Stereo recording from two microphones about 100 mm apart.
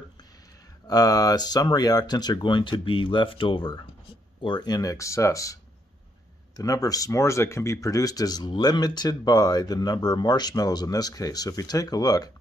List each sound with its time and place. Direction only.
0.8 s speech: 40° left (ahead or behind); by 3.8 s 60° left (ahead or behind)
4.4 s speech: 50° left (ahead or behind)